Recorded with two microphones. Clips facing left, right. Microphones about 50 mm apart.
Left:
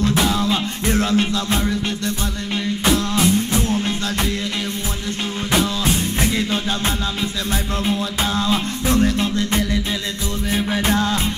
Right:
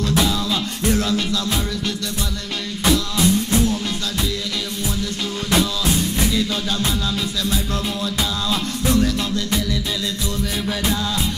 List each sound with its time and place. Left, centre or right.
0.0 s music: left
3.2 s music: left
6.3 s music: left
10.9 s music: left